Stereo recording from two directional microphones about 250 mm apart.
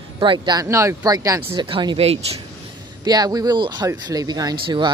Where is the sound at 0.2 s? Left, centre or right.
Centre.